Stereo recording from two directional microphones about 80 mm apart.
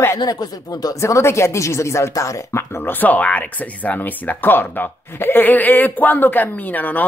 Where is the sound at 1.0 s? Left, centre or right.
Left.